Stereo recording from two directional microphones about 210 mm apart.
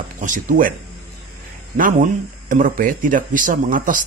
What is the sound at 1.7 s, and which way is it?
Speech, 35° right (ahead or behind).